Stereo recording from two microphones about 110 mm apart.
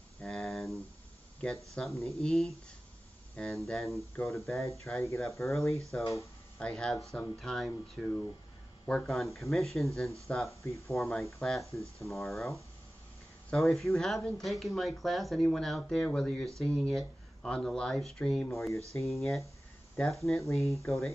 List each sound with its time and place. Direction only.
0.2 s a sound: centre (ahead or behind)
1.4 s speech: centre (ahead or behind)
4.1 s speech: 25° left (ahead or behind)
5.9 s speech: 10° left (ahead or behind)
20.3 s speech: 25° left (ahead or behind)